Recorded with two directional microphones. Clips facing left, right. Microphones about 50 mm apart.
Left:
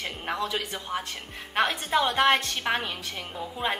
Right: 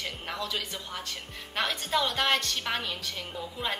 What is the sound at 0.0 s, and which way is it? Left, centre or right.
A woman's voice, left.